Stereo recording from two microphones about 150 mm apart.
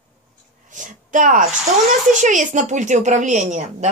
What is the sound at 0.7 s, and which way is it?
A woman's voice, 55° right (ahead or behind).